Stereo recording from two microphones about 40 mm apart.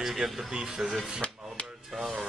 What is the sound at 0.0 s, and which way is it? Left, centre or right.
Speech, centre.